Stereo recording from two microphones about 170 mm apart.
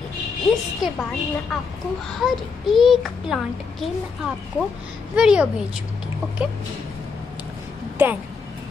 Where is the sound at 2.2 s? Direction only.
Centre (ahead or behind).